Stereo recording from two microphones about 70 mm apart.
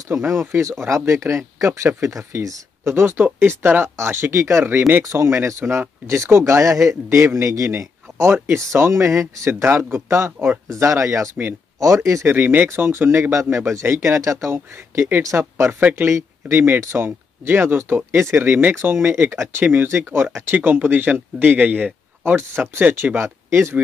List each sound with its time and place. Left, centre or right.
0.1 s speech: right
5.0 s speech: right
12.4 s speech: right
15.2 s speech: right
15.8 s a man's voice: right
16.1 s a man's voice: right
22.2 s speech: right
23.1 s speech: right